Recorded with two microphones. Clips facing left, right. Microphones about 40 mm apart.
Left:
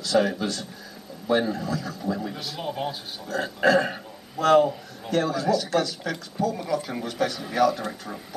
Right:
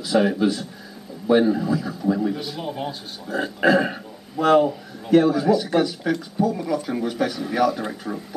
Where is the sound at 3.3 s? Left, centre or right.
Centre.